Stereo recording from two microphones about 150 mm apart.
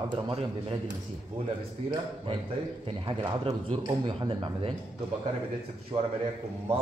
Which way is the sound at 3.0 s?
40° right (ahead or behind).